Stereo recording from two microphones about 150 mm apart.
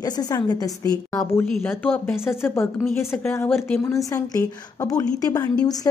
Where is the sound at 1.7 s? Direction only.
15° left (ahead or behind).